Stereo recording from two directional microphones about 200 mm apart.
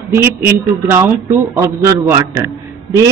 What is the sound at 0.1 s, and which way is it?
A woman's voice, 10° right (ahead or behind).